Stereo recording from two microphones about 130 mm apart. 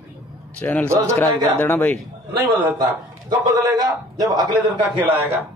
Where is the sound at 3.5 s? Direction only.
30° right (ahead or behind).